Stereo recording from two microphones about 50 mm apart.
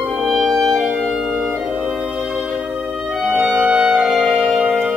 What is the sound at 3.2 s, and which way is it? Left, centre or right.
Music, centre.